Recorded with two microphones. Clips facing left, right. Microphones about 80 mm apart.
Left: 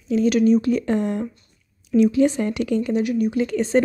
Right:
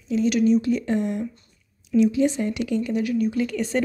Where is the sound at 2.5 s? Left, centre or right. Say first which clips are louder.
Left 3 dB; left.